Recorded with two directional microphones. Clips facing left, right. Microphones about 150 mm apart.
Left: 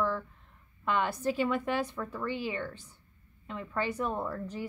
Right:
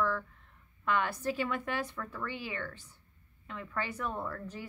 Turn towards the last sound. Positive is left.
turn(degrees=20)  # may be behind; listen again after turning